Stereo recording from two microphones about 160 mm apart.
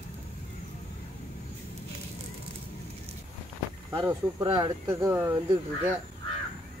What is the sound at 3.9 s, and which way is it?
Speech, 25° right (ahead or behind).